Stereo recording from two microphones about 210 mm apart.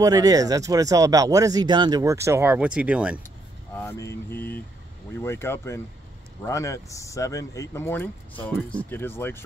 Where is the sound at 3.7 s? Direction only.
10° left (ahead or behind).